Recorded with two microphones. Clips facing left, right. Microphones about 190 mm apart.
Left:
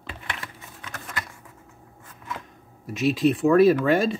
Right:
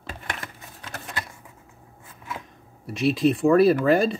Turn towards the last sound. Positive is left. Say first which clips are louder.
# even
turn(degrees=0)  # may be behind; listen again after turning